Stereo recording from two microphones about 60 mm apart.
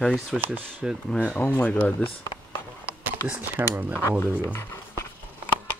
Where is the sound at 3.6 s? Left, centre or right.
Right.